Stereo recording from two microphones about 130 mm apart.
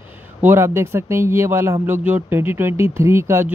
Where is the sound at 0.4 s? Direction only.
20° right (ahead or behind).